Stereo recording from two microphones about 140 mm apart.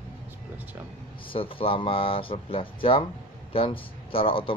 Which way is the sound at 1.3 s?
40° left (ahead or behind).